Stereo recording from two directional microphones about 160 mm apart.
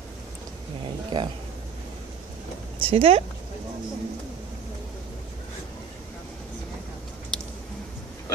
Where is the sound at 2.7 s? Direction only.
35° right (ahead or behind).